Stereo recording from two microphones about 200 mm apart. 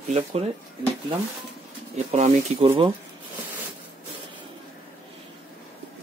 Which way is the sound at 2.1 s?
30° right (ahead or behind).